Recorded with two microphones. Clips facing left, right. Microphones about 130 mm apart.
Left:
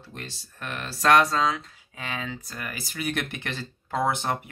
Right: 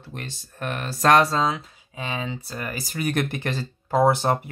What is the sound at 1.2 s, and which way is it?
Speech, 30° right (ahead or behind).